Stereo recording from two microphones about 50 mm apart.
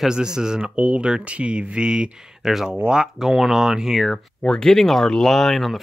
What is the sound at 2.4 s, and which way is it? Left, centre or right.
Speech, centre.